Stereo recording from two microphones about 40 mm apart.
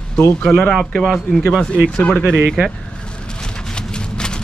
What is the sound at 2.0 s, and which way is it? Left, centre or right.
Speech, left.